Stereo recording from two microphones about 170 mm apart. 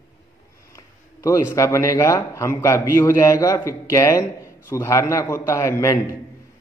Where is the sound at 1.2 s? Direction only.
20° left (ahead or behind).